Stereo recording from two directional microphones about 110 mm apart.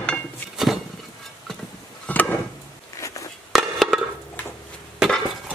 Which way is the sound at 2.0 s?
15° left (ahead or behind).